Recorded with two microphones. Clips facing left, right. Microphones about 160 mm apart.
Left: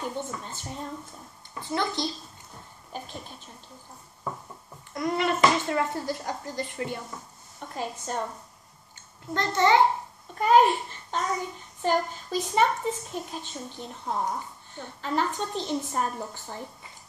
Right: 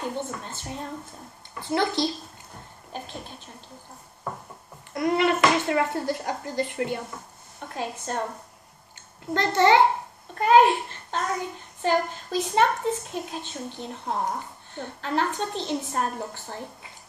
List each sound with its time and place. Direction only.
0.0 s speech: 60° right (ahead or behind)
4.9 s speech: 60° right (ahead or behind)
9.3 s a child's voice: 65° right (ahead or behind)